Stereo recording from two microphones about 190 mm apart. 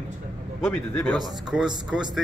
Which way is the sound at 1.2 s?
5° right (ahead or behind).